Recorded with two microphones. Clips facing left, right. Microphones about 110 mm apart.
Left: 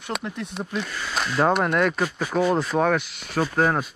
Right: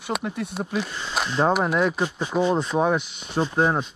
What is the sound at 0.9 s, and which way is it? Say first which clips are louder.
Speech: left 1 dB; 20° right (ahead or behind).